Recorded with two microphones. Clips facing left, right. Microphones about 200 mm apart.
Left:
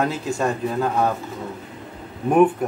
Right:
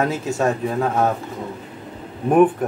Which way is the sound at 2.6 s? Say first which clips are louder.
Right 1 dB; centre (ahead or behind).